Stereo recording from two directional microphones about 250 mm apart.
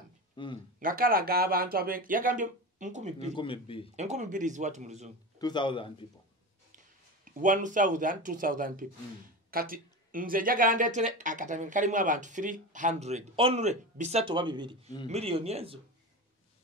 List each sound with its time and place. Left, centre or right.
0.4 s speech: centre
0.7 s speech: right
3.3 s a man's voice: left
3.9 s speech: right
5.4 s a man's voice: centre
7.3 s speech: right